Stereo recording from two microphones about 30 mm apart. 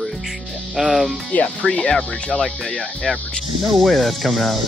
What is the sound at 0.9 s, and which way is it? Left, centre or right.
Speech, centre.